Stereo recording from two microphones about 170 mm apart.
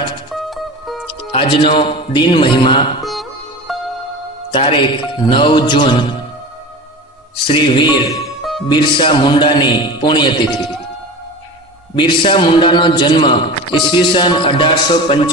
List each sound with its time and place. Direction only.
0.3 s music: centre (ahead or behind)
1.3 s a man's voice: 30° left (ahead or behind)
3.0 s music: centre (ahead or behind)
4.5 s a man's voice: 30° left (ahead or behind)
7.4 s a man's voice: 30° left (ahead or behind)
8.4 s music: centre (ahead or behind)
8.6 s a man's voice: 30° left (ahead or behind)
11.9 s a man's voice: 30° left (ahead or behind)